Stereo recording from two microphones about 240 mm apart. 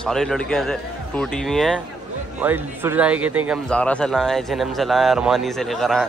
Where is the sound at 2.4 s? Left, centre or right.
Centre.